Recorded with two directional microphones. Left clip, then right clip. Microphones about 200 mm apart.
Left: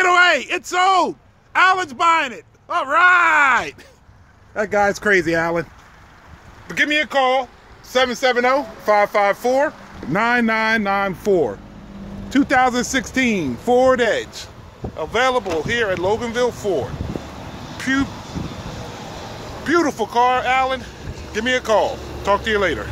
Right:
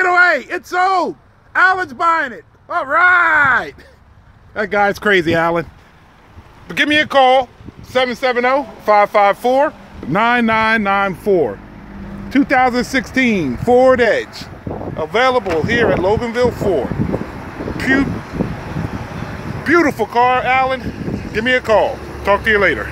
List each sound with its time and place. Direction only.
0.0 s a sound: 10° left (ahead or behind)
0.7 s speech: 5° left (ahead or behind)
6.7 s speech: 15° right (ahead or behind)
7.9 s speech: 10° left (ahead or behind)
12.3 s speech: 5° right (ahead or behind)
19.6 s speech: 10° right (ahead or behind)